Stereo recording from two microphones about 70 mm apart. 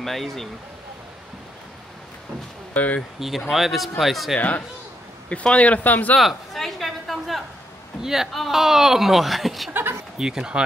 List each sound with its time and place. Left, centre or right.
0.0 s speech: centre
2.7 s speech: left
3.2 s speech: centre
4.4 s speech: left
6.1 s a sound: centre
8.0 s speech: centre